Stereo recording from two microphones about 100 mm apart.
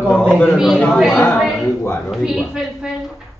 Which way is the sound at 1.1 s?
20° left (ahead or behind).